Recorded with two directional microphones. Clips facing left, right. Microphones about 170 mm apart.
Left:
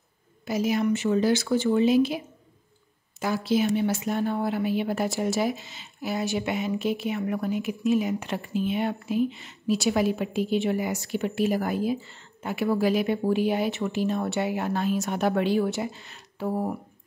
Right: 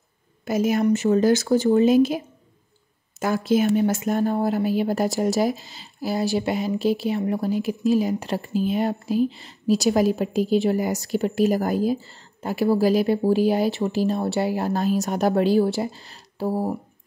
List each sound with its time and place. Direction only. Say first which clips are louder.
0.5 s speech: right 4 dB; 50° right (ahead or behind); by 16.7 s 35° right (ahead or behind)